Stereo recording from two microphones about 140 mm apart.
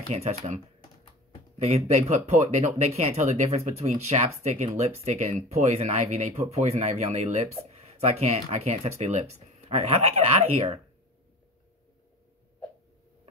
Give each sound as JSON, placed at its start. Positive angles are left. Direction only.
{"t": 0.1, "sound": "speech", "side_deg": -55}
{"t": 1.9, "sound": "speech", "side_deg": -55}